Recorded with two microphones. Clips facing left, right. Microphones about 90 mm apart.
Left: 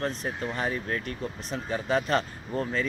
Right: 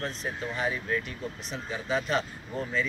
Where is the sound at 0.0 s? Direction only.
45° left (ahead or behind).